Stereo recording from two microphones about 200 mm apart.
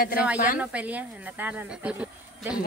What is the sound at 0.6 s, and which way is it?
Speech, 5° right (ahead or behind).